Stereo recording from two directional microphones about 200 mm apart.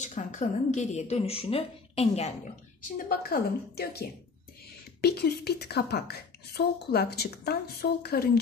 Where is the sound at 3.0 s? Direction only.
50° left (ahead or behind).